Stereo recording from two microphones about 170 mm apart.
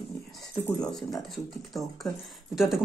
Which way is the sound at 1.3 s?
Centre (ahead or behind).